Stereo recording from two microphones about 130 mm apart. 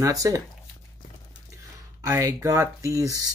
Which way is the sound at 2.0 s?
25° right (ahead or behind).